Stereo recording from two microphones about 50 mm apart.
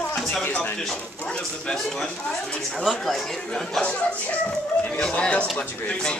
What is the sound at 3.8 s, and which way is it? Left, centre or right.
A man's voice, left.